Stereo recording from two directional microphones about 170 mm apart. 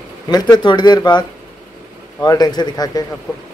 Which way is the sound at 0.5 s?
25° left (ahead or behind).